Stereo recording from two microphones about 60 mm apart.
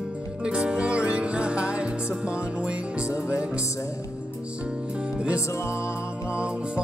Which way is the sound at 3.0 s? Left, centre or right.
Left.